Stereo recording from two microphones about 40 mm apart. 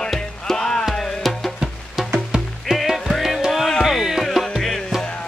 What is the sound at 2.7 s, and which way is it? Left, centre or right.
Music, centre.